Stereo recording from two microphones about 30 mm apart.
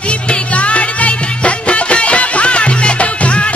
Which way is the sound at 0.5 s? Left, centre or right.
Left.